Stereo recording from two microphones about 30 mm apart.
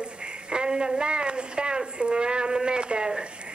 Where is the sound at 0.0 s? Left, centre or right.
Right.